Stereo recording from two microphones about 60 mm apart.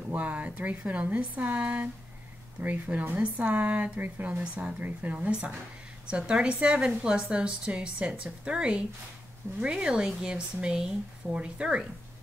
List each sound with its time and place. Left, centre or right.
0.1 s a woman's voice: right